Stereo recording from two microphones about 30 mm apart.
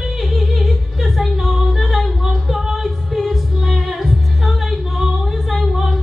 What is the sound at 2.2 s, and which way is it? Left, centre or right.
Singing, centre.